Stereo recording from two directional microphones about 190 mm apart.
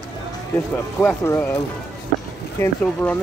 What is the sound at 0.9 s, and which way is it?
Speech, 10° left (ahead or behind).